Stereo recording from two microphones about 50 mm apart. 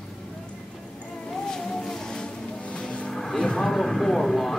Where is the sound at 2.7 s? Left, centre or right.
Left.